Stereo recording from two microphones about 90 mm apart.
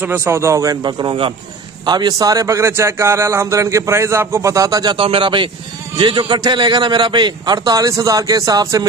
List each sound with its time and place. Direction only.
0.0 s a man's voice: 25° right (ahead or behind); by 4.9 s 40° right (ahead or behind)
4.9 s a man's voice: 85° right; by 8.8 s 40° right (ahead or behind)